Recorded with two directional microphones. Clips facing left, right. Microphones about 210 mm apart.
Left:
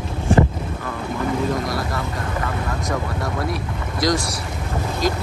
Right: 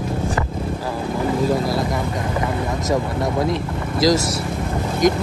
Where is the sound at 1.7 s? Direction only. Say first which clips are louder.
Right 4 dB; 20° right (ahead or behind).